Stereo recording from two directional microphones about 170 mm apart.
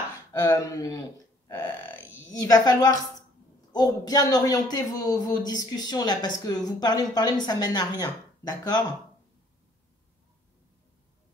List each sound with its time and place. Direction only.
0.3 s a woman's voice: 20° left (ahead or behind)
2.4 s a woman's voice: 20° left (ahead or behind)